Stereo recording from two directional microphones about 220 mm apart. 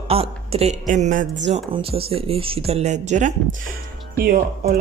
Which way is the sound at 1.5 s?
25° right (ahead or behind).